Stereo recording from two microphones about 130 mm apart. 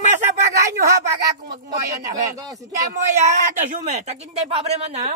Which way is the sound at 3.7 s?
60° right (ahead or behind).